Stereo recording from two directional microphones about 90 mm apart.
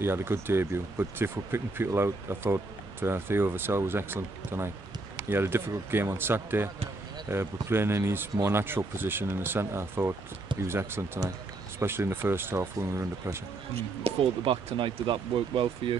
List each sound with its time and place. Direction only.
0.0 s speech: 25° right (ahead or behind)
14.0 s speech: 70° right (ahead or behind)